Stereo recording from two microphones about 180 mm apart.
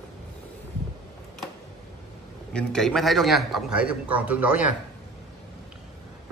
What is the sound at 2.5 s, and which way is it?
A man's voice, 5° left (ahead or behind).